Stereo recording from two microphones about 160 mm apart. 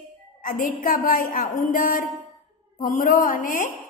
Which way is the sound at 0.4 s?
55° left (ahead or behind).